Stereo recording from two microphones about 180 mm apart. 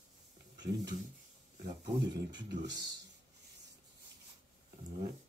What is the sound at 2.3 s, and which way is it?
Speech, 75° right (ahead or behind).